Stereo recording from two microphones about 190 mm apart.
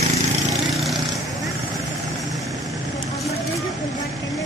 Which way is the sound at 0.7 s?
Centre (ahead or behind).